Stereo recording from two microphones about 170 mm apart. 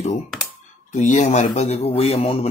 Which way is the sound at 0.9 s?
45° left (ahead or behind).